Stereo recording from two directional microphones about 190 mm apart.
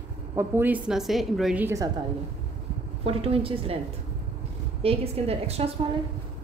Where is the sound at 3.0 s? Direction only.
30° right (ahead or behind).